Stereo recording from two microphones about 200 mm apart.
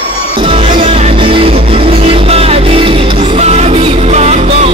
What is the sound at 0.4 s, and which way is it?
Music, 25° right (ahead or behind).